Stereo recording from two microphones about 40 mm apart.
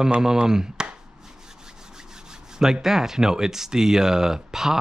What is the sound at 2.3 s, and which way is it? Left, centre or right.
Speech, centre.